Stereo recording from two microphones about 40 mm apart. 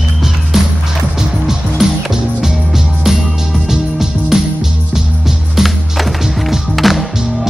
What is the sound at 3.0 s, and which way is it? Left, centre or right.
Music, centre.